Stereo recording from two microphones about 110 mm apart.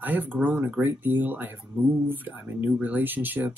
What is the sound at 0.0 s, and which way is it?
Speech, 15° right (ahead or behind).